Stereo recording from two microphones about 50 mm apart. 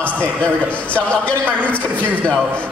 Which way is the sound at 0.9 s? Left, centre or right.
Left.